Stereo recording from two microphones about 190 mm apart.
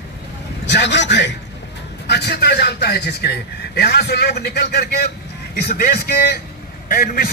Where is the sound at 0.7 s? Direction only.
65° left (ahead or behind).